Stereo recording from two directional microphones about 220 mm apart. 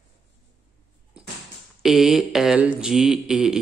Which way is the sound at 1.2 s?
5° right (ahead or behind).